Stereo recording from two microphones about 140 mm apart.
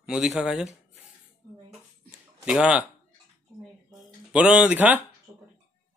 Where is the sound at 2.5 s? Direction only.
5° right (ahead or behind).